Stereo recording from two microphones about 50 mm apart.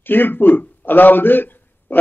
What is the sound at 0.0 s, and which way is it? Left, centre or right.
A man's voice, left.